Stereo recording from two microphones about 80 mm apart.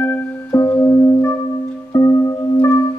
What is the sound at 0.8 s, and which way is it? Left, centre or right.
Music, left.